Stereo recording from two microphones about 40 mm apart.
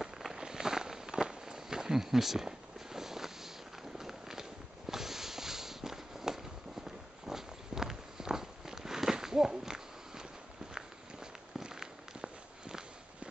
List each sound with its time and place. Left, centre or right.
0.0 s walk: centre
4.0 s a sound: centre
7.2 s walk: centre
11.6 s walk: centre